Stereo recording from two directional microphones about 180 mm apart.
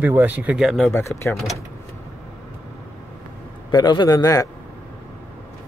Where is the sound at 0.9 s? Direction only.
15° left (ahead or behind).